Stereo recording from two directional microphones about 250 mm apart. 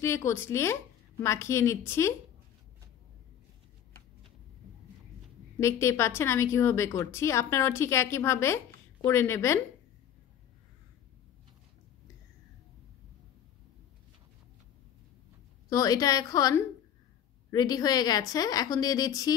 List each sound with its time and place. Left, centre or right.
0.0 s a woman's voice: centre
5.6 s a woman's voice: centre
15.7 s a woman's voice: centre